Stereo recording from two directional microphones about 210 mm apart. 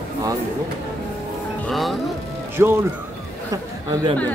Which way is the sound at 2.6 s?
10° right (ahead or behind).